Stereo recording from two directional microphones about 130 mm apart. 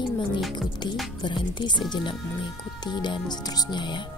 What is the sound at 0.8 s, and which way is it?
Speech, 35° left (ahead or behind).